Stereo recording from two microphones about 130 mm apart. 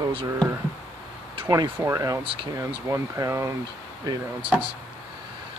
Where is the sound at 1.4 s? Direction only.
25° right (ahead or behind).